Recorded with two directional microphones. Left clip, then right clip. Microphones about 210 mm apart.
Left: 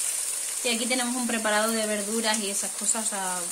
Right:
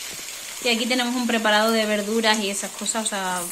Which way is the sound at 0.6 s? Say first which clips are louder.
Right 6 dB; centre (ahead or behind).